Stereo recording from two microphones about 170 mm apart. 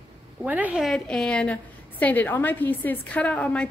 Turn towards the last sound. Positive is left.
turn(degrees=5)  # may be behind; listen again after turning